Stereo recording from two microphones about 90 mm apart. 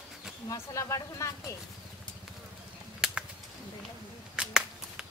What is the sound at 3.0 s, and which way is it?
Bird flight, 10° right (ahead or behind).